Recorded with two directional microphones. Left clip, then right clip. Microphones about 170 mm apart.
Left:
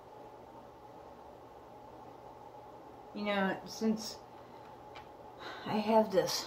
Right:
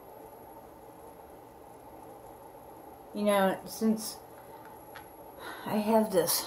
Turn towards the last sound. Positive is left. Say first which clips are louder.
# right 2 dB
turn(degrees=-15)  # may be behind; listen again after turning